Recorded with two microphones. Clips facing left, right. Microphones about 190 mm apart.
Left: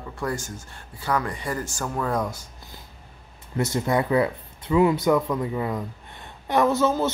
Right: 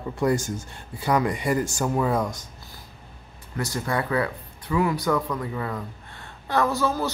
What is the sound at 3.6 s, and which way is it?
Speech, 20° left (ahead or behind).